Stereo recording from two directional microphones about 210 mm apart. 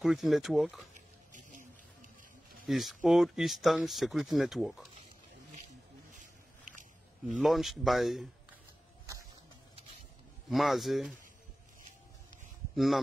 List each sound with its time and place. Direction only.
0.0 s speech: centre (ahead or behind)
1.3 s a sound: 35° right (ahead or behind)
2.6 s speech: centre (ahead or behind)
6.1 s a sound: 35° right (ahead or behind)
7.2 s speech: centre (ahead or behind)
10.5 s speech: centre (ahead or behind)
12.7 s speech: centre (ahead or behind)